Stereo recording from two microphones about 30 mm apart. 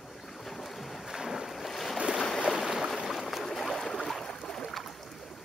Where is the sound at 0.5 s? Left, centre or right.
Centre.